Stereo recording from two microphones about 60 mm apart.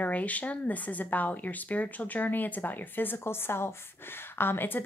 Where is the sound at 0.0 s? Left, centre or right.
Left.